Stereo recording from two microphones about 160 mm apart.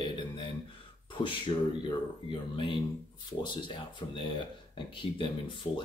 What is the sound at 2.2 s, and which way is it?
Speech, 30° left (ahead or behind).